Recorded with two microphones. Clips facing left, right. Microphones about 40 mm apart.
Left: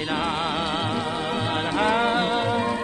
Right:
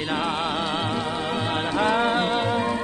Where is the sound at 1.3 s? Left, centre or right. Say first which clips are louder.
Even; centre.